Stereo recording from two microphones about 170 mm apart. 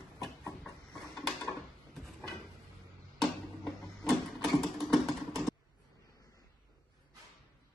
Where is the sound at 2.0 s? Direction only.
Centre (ahead or behind).